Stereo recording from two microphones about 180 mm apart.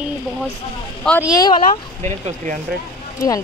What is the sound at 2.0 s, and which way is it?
Speech, 40° right (ahead or behind).